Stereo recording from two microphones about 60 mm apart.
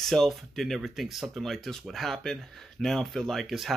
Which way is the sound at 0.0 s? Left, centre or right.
Centre.